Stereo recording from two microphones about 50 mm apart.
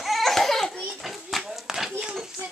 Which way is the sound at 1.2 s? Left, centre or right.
Centre.